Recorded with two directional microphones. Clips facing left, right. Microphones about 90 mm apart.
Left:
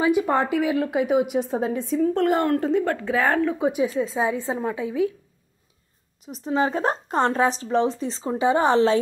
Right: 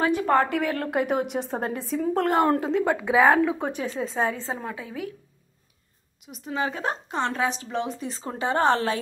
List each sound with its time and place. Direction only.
0.0 s a woman's voice: 15° left (ahead or behind); by 2.4 s centre (ahead or behind)
2.8 s a woman's voice: 15° right (ahead or behind)
3.6 s a woman's voice: 5° left (ahead or behind)
4.2 s a woman's voice: 15° left (ahead or behind)
6.4 s a woman's voice: 35° left (ahead or behind)
8.3 s a woman's voice: 15° left (ahead or behind)